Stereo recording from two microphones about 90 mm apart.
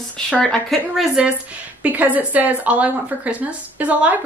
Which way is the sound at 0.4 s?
5° left (ahead or behind).